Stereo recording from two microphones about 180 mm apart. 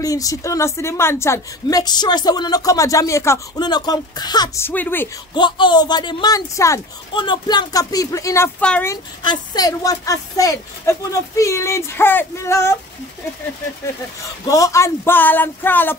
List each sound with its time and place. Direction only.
0.0 s a woman's voice: 20° left (ahead or behind)
4.6 s speech: 10° left (ahead or behind)
5.3 s a woman's voice: 25° left (ahead or behind); by 8.9 s 5° left (ahead or behind)
9.2 s speech: 25° left (ahead or behind)
14.4 s speech: 20° left (ahead or behind)